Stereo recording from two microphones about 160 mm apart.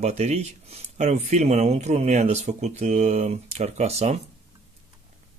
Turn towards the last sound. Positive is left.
turn(degrees=-40)  # may be behind; listen again after turning